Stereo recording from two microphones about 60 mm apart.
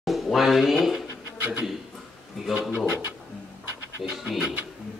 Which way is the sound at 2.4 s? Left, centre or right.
Centre.